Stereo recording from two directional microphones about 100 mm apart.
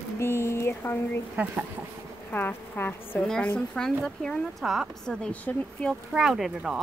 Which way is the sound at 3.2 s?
10° left (ahead or behind).